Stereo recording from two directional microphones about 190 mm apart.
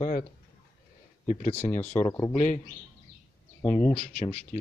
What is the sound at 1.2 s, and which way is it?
Speech, 35° left (ahead or behind).